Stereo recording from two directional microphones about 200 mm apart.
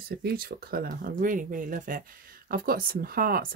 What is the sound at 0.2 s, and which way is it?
Speech, 50° right (ahead or behind).